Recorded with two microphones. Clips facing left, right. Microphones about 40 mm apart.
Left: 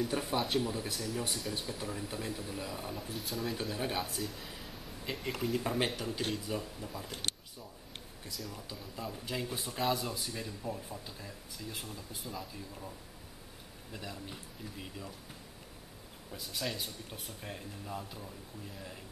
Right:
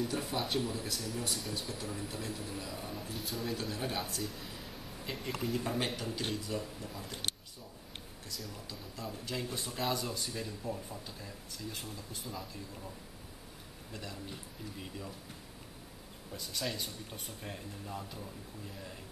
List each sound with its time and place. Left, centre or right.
0.1 s speech: centre
0.4 s speech: centre
0.7 s speech: centre
2.9 s speech: centre
3.7 s speech: centre
4.0 s speech: centre
8.3 s speech: centre
9.2 s speech: centre
13.9 s speech: centre
16.3 s speech: centre